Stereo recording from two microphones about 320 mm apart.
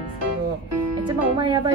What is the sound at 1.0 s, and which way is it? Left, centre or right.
Speech, centre.